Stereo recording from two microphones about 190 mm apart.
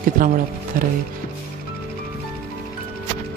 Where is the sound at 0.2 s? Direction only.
45° right (ahead or behind).